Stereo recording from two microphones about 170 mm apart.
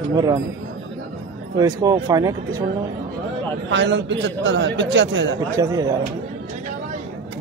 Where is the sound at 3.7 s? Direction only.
90° right.